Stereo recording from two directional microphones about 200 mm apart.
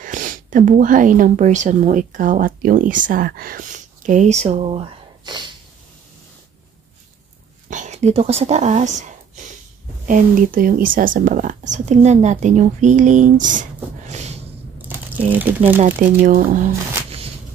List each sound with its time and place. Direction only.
0.0 s speech: 40° right (ahead or behind); by 5.5 s 20° right (ahead or behind)
7.7 s speech: 35° right (ahead or behind)
14.0 s a sound: 35° right (ahead or behind)
14.9 s speech: 10° right (ahead or behind)
15.8 s speech: 45° right (ahead or behind)